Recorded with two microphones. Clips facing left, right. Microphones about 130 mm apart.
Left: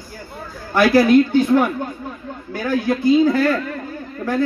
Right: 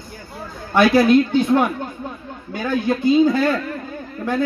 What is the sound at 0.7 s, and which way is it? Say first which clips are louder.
Speech: left 1 dB; 20° right (ahead or behind).